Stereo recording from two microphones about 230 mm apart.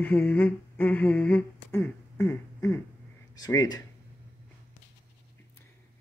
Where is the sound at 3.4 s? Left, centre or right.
Centre.